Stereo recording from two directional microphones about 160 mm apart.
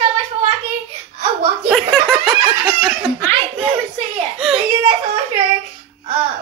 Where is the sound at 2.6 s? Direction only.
5° right (ahead or behind).